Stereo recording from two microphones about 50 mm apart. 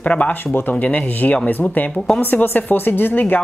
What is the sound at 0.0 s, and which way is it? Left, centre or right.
Speech, left.